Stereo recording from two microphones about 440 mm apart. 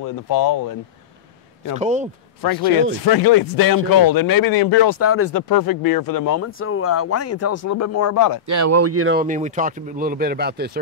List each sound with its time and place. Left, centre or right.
0.0 s speech: left
1.8 s speech: centre
3.1 s speech: left
4.8 s speech: left
5.3 s speech: left
8.5 s speech: right